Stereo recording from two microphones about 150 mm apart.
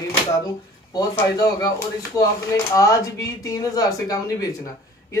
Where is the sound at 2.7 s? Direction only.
25° left (ahead or behind).